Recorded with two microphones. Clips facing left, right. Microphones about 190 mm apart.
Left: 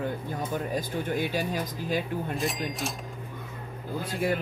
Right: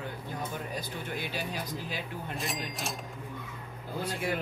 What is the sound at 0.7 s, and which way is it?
Speech, 45° left (ahead or behind).